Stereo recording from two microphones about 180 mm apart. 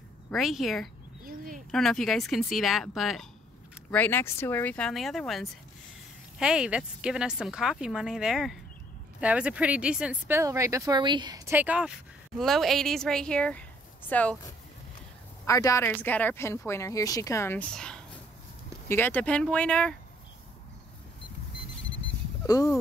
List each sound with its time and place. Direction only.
0.3 s speech: centre (ahead or behind)
1.2 s a sound: 50° right (ahead or behind)
1.7 s speech: centre (ahead or behind)
3.9 s speech: 10° left (ahead or behind)
15.4 s speech: 20° left (ahead or behind)